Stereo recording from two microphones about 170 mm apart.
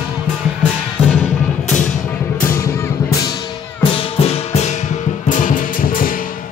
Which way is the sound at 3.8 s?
35° left (ahead or behind).